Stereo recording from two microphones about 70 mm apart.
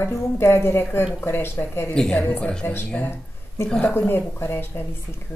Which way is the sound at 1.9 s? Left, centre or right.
Centre.